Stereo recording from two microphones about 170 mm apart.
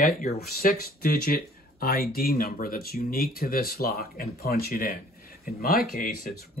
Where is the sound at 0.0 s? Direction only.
60° left (ahead or behind).